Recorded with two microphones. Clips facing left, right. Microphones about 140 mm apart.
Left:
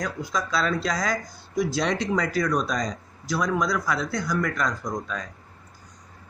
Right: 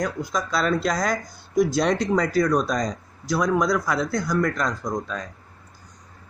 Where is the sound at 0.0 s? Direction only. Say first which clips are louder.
Right 3 dB; 50° right (ahead or behind); by 5.2 s 30° right (ahead or behind).